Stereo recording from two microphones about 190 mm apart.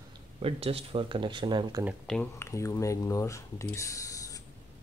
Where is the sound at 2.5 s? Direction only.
15° left (ahead or behind).